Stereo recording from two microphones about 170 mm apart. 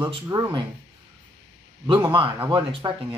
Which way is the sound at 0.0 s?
20° right (ahead or behind).